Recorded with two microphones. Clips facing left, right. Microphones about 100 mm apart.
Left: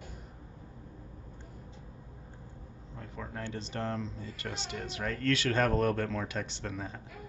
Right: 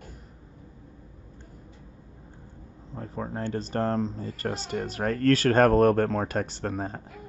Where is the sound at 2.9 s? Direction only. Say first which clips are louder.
Right 8 dB; 40° right (ahead or behind).